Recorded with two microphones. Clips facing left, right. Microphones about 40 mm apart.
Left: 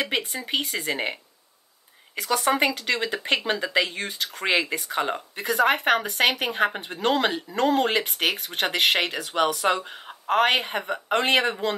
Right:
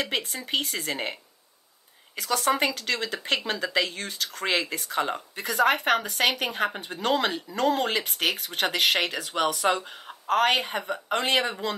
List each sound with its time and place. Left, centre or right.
0.0 s speech: centre
2.1 s speech: centre
6.0 s a woman's voice: left
6.3 s speech: centre